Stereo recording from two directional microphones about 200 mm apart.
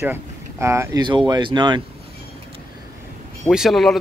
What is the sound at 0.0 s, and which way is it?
Speech, 10° right (ahead or behind).